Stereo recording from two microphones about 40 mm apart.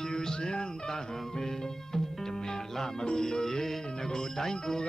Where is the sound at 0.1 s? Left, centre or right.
Centre.